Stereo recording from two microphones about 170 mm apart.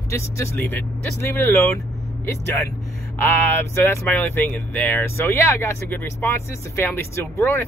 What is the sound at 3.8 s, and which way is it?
Speech, 10° left (ahead or behind).